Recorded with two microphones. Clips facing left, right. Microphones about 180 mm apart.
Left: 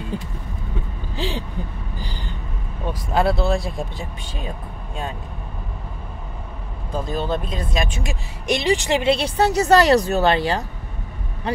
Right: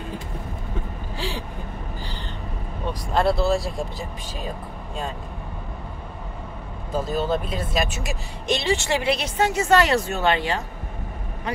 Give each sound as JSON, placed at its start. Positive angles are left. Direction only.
{"t": 1.1, "sound": "a sound", "side_deg": 20}
{"t": 2.0, "sound": "vehicle", "side_deg": 15}
{"t": 2.9, "sound": "speech", "side_deg": 5}
{"t": 6.9, "sound": "speech", "side_deg": -5}
{"t": 8.5, "sound": "speech", "side_deg": 15}